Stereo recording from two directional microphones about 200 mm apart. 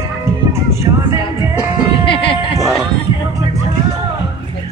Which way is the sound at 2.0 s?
25° left (ahead or behind).